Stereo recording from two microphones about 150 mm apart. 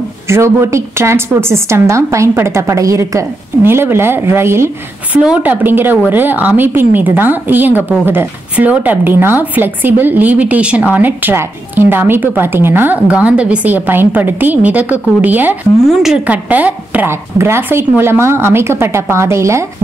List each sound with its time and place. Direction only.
0.3 s a woman's voice: 20° right (ahead or behind)